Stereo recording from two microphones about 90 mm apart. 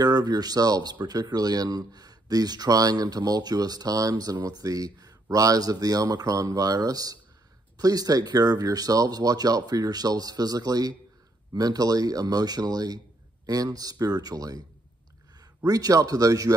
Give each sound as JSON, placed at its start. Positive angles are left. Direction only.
{"t": 0.0, "sound": "speech", "side_deg": -45}
{"t": 15.6, "sound": "speech", "side_deg": -40}